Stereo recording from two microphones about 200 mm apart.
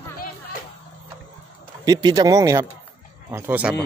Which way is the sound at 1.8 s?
20° right (ahead or behind).